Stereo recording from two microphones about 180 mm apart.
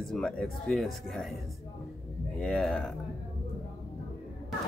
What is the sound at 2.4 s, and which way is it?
Speech, 5° left (ahead or behind).